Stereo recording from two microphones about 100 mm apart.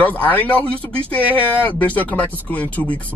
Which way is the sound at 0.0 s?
15° left (ahead or behind).